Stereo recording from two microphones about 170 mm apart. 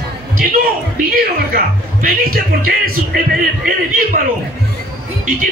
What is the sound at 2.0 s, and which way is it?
Speech, 60° right (ahead or behind).